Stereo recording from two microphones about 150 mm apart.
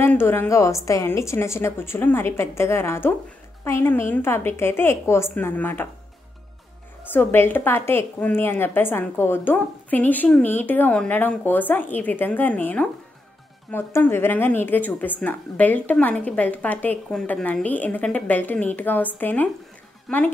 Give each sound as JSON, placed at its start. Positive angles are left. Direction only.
{"t": 0.0, "sound": "speech", "side_deg": 15}
{"t": 7.1, "sound": "speech", "side_deg": 15}